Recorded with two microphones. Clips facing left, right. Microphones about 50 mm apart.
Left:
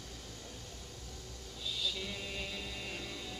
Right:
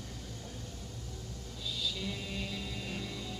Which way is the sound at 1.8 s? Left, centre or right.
Centre.